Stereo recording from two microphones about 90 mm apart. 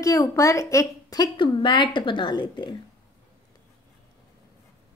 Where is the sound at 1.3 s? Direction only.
60° left (ahead or behind).